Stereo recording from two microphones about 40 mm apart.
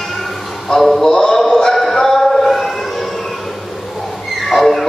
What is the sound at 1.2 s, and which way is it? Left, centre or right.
Music, centre.